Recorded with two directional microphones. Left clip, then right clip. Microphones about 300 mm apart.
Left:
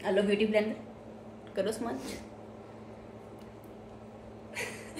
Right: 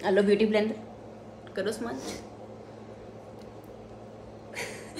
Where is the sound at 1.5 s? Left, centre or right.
Centre.